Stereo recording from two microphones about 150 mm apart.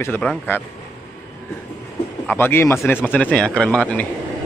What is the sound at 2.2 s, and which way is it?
A man's voice, 15° left (ahead or behind).